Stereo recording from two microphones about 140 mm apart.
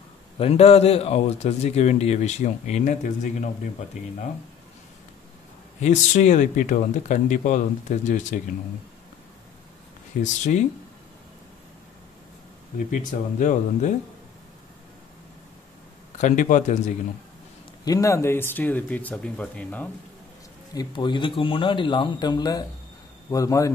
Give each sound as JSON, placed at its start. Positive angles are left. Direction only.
{"t": 0.4, "sound": "a man's voice", "side_deg": 45}
{"t": 5.8, "sound": "speech", "side_deg": 60}
{"t": 10.2, "sound": "speech", "side_deg": 60}
{"t": 12.7, "sound": "speech", "side_deg": 65}
{"t": 16.2, "sound": "speech", "side_deg": 65}
{"t": 17.8, "sound": "speech", "side_deg": 25}
{"t": 20.7, "sound": "a man's voice", "side_deg": 35}